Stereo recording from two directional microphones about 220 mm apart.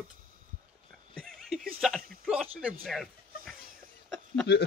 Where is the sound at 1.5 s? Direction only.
Centre (ahead or behind).